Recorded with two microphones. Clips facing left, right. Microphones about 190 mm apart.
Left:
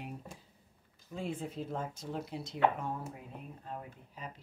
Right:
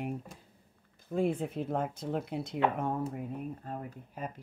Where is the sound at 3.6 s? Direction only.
50° right (ahead or behind).